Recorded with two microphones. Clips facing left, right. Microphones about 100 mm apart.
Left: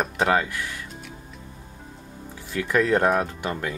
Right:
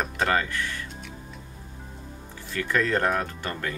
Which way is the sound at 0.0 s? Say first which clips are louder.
Left 3 dB; 10° left (ahead or behind).